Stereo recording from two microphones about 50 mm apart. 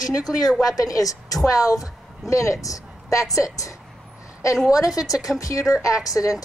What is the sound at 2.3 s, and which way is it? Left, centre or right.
A woman's voice, left.